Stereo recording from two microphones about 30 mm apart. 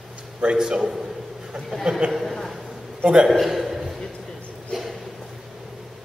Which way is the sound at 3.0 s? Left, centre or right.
Right.